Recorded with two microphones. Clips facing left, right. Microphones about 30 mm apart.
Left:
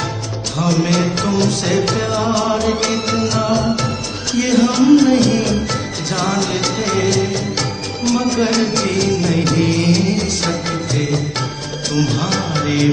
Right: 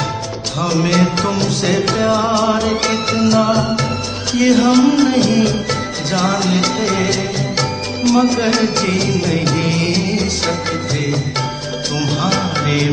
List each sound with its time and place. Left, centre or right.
0.6 s music of bollywood: centre